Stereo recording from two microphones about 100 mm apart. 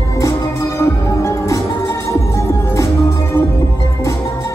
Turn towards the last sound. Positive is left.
turn(degrees=30)  # may be behind; listen again after turning